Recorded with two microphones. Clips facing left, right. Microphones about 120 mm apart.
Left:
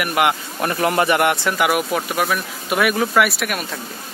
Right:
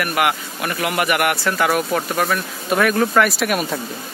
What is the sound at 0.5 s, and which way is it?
Speech, 35° left (ahead or behind).